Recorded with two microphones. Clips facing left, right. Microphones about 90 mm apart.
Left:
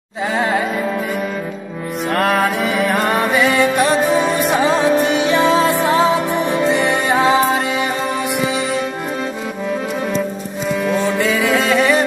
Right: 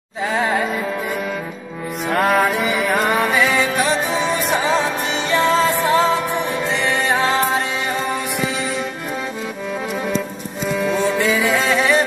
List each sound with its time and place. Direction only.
0.3 s music: centre (ahead or behind)
2.0 s music: centre (ahead or behind)
4.6 s music: 55° left (ahead or behind)
5.3 s music: 15° left (ahead or behind)
10.8 s music: centre (ahead or behind)